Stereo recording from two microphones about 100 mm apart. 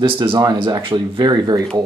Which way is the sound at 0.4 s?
45° right (ahead or behind).